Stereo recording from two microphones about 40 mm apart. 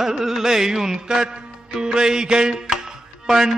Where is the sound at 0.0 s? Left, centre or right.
Centre.